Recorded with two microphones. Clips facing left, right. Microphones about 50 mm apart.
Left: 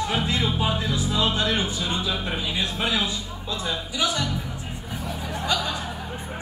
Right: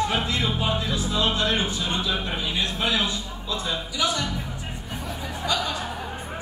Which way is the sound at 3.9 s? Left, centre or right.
Left.